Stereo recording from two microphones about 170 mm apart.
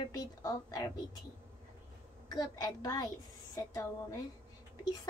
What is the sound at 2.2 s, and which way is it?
A woman's voice, 25° left (ahead or behind).